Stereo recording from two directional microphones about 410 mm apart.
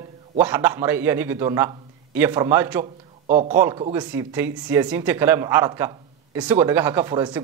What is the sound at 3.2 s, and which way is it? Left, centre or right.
A man's voice, centre.